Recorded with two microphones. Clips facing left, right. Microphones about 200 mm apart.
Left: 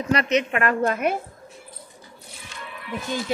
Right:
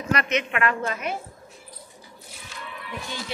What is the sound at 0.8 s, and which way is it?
Speech, 55° left (ahead or behind).